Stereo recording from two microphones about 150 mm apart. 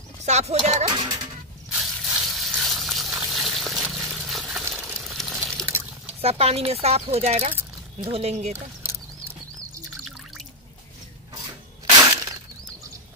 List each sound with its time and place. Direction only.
0.2 s speech: 45° right (ahead or behind)
0.8 s a child's voice: 30° right (ahead or behind)
1.7 s a sound: 5° right (ahead or behind)
4.6 s a sound: 15° right (ahead or behind)
5.7 s water: 15° right (ahead or behind)
6.2 s speech: 40° right (ahead or behind)
11.3 s breaking: 20° right (ahead or behind)